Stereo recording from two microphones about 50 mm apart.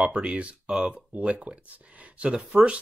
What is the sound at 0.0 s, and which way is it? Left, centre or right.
Speech, right.